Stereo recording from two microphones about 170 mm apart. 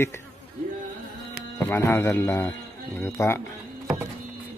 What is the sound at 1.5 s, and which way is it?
A man's voice, 15° left (ahead or behind).